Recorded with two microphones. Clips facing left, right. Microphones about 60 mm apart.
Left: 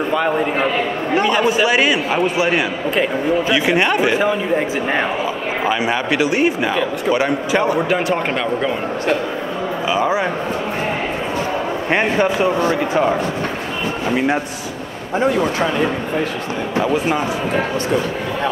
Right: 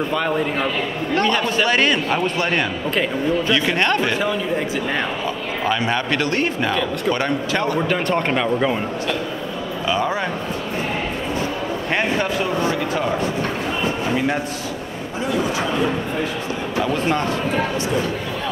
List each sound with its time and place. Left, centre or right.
0.1 s a man's voice: centre
9.8 s a man's voice: centre
11.9 s speech: left
14.1 s speech: centre
16.8 s a man's voice: centre